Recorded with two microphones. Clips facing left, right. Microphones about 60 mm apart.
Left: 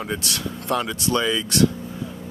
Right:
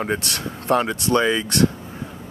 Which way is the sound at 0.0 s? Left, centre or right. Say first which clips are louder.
Right 3 dB; right.